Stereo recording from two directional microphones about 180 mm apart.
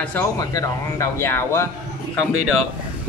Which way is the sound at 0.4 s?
20° left (ahead or behind).